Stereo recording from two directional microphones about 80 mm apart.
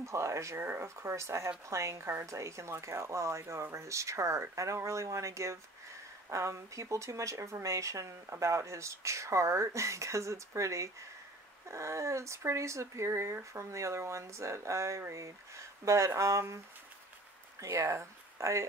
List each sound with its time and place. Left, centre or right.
0.0 s speech: right